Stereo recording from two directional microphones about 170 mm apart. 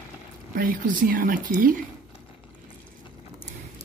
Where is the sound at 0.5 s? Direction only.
55° right (ahead or behind).